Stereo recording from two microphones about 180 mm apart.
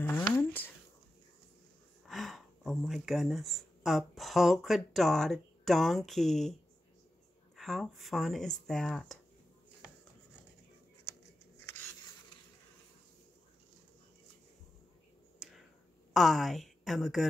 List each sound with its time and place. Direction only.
0.4 s a sound: 10° left (ahead or behind)
2.0 s speech: centre (ahead or behind)
7.5 s speech: centre (ahead or behind)
16.1 s a woman's voice: centre (ahead or behind)